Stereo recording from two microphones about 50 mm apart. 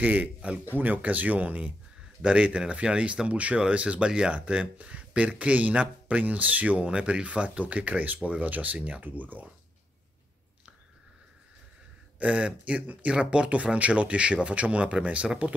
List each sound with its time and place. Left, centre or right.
0.0 s speech: right
2.2 s speech: centre
12.2 s speech: right